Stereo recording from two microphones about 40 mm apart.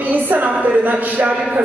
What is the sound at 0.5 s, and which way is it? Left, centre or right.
A man's voice, right.